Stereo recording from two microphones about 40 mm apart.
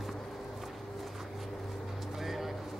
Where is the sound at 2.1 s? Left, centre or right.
Centre.